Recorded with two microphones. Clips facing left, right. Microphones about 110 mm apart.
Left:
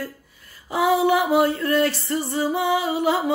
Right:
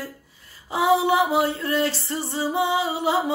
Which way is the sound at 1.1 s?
25° right (ahead or behind).